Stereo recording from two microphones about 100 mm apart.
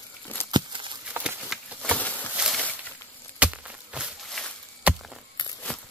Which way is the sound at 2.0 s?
15° left (ahead or behind).